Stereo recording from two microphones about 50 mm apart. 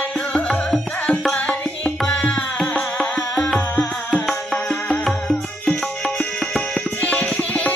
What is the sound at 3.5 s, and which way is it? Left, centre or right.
Music, left.